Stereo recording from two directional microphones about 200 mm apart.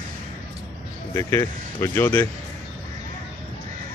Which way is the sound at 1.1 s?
15° left (ahead or behind).